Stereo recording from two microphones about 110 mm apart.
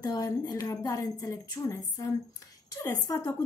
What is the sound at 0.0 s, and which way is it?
A woman's voice, 35° left (ahead or behind).